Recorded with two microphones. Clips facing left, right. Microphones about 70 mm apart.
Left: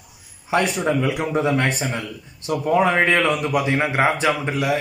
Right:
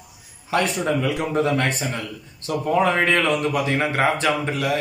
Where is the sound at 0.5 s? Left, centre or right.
Centre.